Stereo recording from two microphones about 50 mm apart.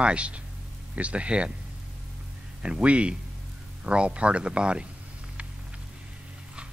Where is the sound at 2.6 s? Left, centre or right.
Right.